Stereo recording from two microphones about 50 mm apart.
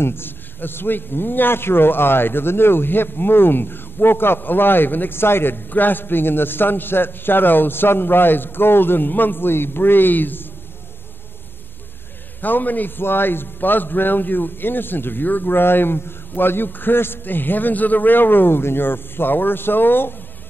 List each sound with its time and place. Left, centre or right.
0.0 s a man's voice: left
12.4 s a man's voice: left